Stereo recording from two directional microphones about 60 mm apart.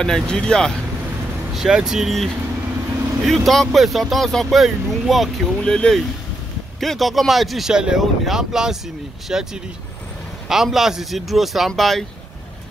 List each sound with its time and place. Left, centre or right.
0.0 s speech: centre
1.5 s speech: centre
3.3 s speech: centre
5.6 s speech: centre
6.8 s speech: centre
10.5 s speech: centre